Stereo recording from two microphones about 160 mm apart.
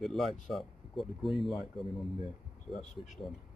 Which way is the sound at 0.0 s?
Centre (ahead or behind).